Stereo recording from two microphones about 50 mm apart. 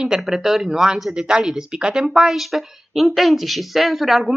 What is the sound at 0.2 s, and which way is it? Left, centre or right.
A woman's voice, centre.